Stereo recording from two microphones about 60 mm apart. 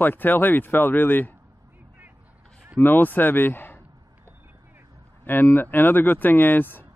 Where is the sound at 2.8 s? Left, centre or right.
Left.